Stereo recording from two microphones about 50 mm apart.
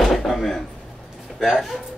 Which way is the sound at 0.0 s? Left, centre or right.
Centre.